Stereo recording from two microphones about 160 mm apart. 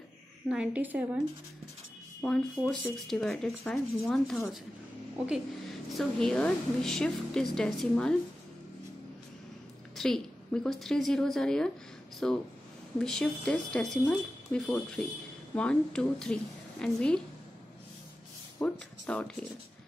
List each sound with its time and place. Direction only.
0.5 s a woman's voice: 10° right (ahead or behind)
2.2 s a woman's voice: 5° left (ahead or behind)
5.9 s speech: 5° left (ahead or behind)
9.9 s speech: 5° left (ahead or behind)
18.6 s speech: 10° left (ahead or behind)